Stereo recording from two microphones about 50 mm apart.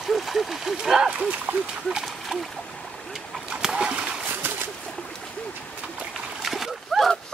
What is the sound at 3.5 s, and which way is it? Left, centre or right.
Boat, centre.